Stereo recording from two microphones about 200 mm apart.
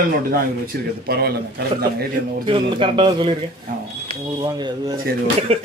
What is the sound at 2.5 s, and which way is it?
Speech, 25° right (ahead or behind).